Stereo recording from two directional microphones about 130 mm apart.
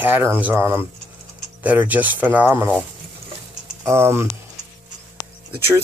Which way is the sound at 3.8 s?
20° right (ahead or behind).